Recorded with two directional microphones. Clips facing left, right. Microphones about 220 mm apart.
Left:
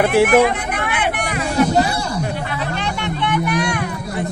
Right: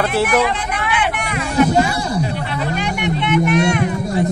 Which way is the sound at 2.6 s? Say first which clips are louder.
Right 6 dB; 10° right (ahead or behind).